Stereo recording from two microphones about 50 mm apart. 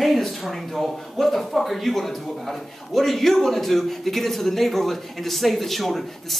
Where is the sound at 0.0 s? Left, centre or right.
Centre.